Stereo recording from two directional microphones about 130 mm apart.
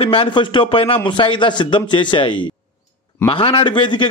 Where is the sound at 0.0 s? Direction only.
45° left (ahead or behind).